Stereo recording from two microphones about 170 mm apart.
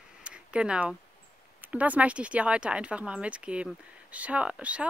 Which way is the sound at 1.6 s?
10° right (ahead or behind).